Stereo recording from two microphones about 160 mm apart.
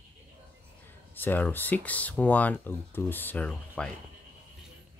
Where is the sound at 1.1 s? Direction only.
10° left (ahead or behind).